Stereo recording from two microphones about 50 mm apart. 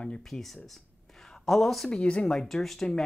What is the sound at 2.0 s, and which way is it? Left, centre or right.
Speech, left.